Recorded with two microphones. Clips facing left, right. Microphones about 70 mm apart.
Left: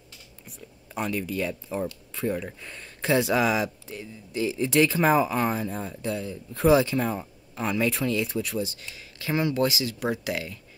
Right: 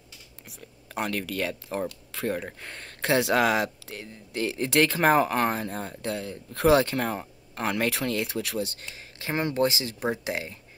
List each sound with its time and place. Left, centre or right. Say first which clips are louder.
0.9 s speech: left 1 dB; right
8.3 s speech: left 1 dB; right